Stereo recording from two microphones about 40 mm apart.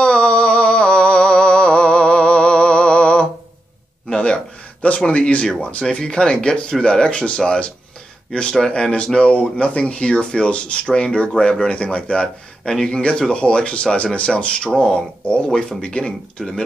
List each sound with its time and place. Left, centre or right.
0.0 s a sound: left
5.0 s speech: left
15.5 s speech: centre